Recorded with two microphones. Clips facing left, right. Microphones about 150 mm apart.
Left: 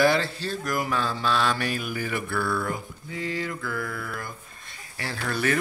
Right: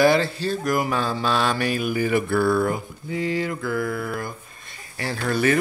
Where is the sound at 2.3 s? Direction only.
35° right (ahead or behind).